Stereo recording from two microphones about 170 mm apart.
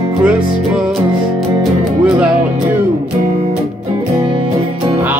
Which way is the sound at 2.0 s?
10° right (ahead or behind).